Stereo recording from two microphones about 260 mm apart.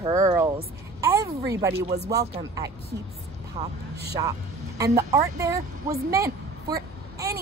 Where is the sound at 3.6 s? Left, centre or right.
Right.